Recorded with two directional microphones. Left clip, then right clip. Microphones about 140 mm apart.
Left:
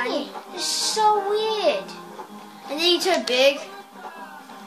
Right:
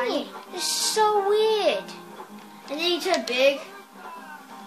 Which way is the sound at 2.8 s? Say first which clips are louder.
Left 4 dB; 30° left (ahead or behind).